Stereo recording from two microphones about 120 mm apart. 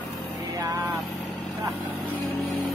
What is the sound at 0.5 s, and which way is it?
Vehicle, 25° right (ahead or behind).